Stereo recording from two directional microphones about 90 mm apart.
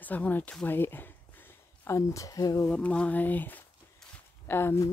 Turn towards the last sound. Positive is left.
turn(degrees=30)  # may be behind; listen again after turning